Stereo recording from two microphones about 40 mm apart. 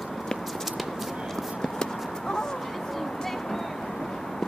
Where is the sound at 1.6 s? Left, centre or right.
Centre.